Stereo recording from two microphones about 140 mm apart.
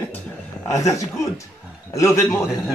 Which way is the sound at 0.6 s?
25° left (ahead or behind).